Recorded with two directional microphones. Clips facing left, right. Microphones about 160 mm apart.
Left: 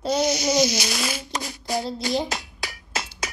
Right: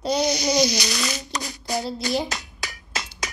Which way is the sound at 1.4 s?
5° left (ahead or behind).